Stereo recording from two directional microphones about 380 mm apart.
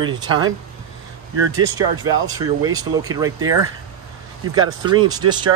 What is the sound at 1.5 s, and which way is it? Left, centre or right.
Speech, centre.